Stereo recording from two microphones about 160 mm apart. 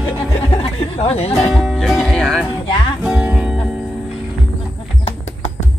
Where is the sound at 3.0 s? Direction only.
5° right (ahead or behind).